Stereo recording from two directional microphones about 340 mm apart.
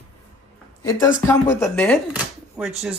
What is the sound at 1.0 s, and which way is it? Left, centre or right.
Speech, centre.